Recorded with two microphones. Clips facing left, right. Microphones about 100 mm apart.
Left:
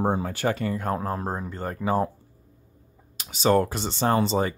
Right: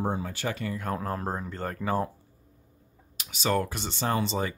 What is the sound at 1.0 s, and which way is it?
Speech, 15° left (ahead or behind).